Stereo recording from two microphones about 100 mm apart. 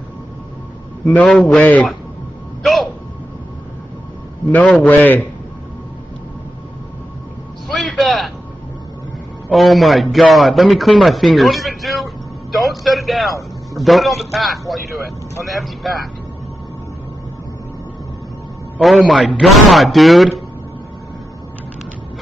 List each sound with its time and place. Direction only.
1.0 s a man's voice: 10° left (ahead or behind)
2.6 s music: centre (ahead or behind)
4.8 s a man's voice: 20° left (ahead or behind)
7.6 s a sound: centre (ahead or behind)
9.5 s a man's voice: centre (ahead or behind)
18.8 s a man's voice: centre (ahead or behind)